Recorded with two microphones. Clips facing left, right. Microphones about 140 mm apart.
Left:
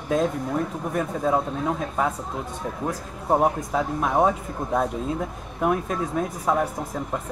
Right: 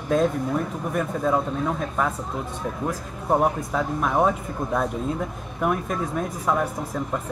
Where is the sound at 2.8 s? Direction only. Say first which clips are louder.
Left 1 dB; 20° left (ahead or behind).